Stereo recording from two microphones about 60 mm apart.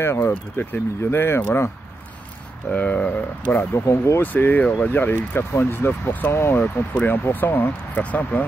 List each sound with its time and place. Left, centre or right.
0.0 s speech: left
0.6 s speech: left
2.7 s speech: left
3.7 s speech: left
4.2 s speech: left
8.0 s speech: left